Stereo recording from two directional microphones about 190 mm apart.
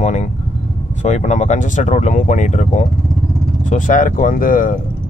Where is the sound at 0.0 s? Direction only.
35° left (ahead or behind).